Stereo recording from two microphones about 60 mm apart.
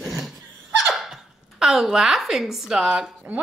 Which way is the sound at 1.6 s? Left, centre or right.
Centre.